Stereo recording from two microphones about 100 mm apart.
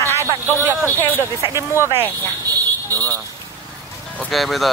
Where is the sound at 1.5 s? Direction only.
25° right (ahead or behind).